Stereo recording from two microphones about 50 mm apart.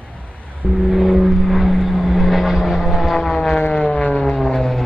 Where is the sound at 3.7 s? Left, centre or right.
Centre.